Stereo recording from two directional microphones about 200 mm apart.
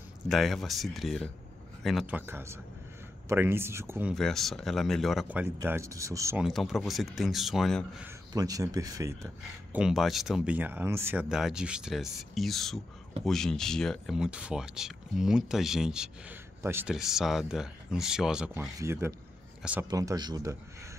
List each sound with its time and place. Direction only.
0.3 s speech: centre (ahead or behind)
4.1 s speech: centre (ahead or behind); by 6.4 s 15° right (ahead or behind)
6.4 s speech: centre (ahead or behind)
8.3 s speech: 20° right (ahead or behind)
19.9 s speech: 20° right (ahead or behind)